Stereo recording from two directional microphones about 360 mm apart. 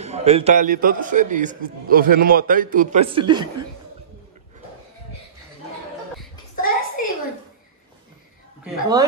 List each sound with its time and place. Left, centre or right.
0.0 s a man's voice: centre
6.5 s a sound: left
8.6 s speech: centre